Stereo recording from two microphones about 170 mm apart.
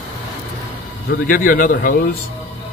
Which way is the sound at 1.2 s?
55° left (ahead or behind).